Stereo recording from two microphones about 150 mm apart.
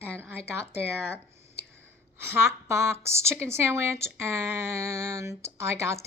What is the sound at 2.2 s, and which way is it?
Speech, 15° right (ahead or behind).